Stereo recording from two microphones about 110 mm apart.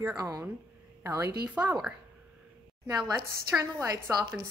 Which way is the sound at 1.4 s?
10° right (ahead or behind).